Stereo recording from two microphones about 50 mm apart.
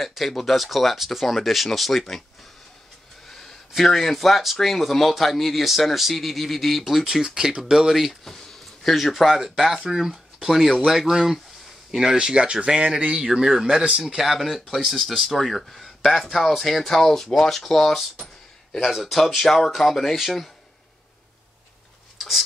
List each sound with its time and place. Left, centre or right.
0.0 s speech: centre
3.3 s speech: centre